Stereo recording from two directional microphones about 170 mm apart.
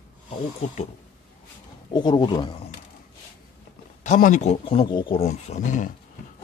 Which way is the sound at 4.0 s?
50° left (ahead or behind).